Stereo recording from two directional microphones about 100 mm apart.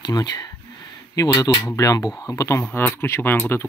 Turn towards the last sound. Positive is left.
turn(degrees=25)  # may be behind; listen again after turning